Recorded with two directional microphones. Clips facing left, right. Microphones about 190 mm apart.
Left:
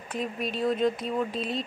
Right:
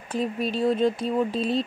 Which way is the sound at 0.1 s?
30° right (ahead or behind).